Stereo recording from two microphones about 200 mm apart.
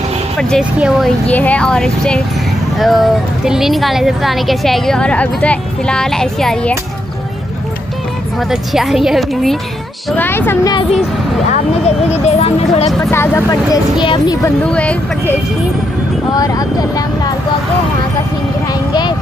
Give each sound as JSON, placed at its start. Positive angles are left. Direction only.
{"t": 0.4, "sound": "a woman's voice", "side_deg": 0}
{"t": 8.4, "sound": "a woman's voice", "side_deg": 0}
{"t": 10.1, "sound": "speech", "side_deg": 10}
{"t": 11.5, "sound": "speech", "side_deg": 30}
{"t": 13.0, "sound": "speech", "side_deg": 10}
{"t": 14.6, "sound": "a woman's voice", "side_deg": 5}
{"t": 16.3, "sound": "speech", "side_deg": 20}
{"t": 18.7, "sound": "speech", "side_deg": 20}